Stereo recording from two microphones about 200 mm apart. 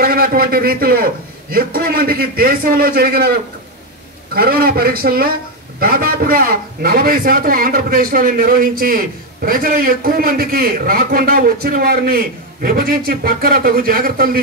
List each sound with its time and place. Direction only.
0.0 s a man's voice: 50° right (ahead or behind)